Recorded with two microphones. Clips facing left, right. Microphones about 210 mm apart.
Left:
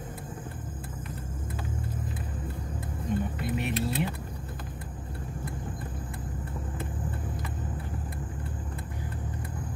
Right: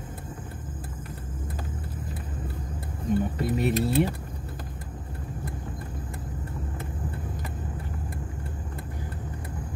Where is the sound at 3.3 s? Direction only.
40° right (ahead or behind).